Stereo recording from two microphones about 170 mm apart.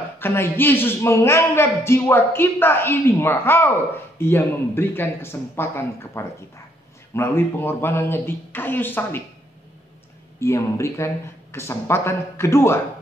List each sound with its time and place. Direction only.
0.2 s a man's voice: 15° left (ahead or behind)
10.4 s a man's voice: 15° left (ahead or behind)